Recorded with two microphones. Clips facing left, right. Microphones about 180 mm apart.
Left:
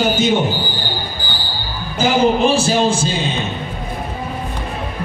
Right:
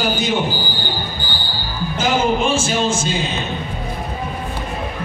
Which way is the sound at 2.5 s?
35° left (ahead or behind).